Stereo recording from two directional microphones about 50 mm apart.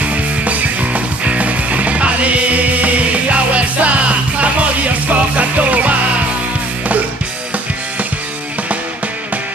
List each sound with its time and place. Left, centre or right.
0.0 s music: right